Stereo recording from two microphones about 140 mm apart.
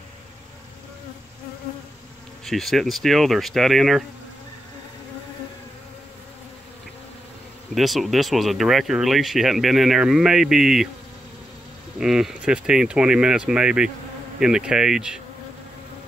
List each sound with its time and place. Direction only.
2.4 s speech: centre (ahead or behind)
7.7 s speech: centre (ahead or behind)
12.0 s speech: 5° right (ahead or behind)